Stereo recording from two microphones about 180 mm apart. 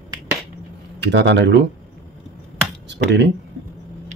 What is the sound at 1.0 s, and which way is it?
Speech, 75° right (ahead or behind).